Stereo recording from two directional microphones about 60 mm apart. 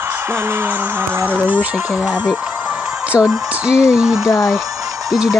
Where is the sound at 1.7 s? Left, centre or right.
Centre.